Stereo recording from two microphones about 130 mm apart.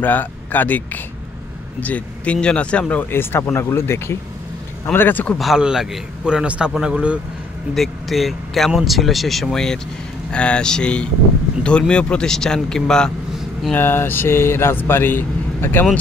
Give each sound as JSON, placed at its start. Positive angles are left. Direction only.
{"t": 0.0, "sound": "speech", "side_deg": 15}
{"t": 5.4, "sound": "a man's voice", "side_deg": -5}
{"t": 13.7, "sound": "speech", "side_deg": 15}